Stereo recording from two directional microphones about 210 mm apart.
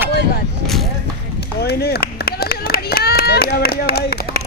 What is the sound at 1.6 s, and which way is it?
Clapping, 50° left (ahead or behind).